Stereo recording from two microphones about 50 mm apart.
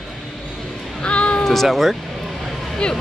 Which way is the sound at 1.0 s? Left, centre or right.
Left.